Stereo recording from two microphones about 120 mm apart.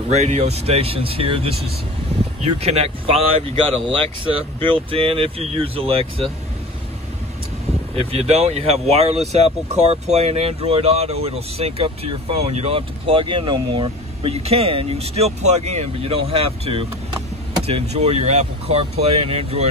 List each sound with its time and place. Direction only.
0.1 s speech: 65° right (ahead or behind)
7.9 s speech: 55° right (ahead or behind)